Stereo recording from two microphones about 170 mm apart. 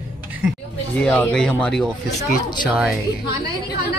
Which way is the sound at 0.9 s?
10° left (ahead or behind).